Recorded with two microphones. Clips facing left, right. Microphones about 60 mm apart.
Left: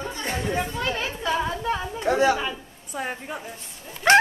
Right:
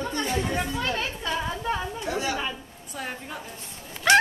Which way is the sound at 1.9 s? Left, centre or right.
Left.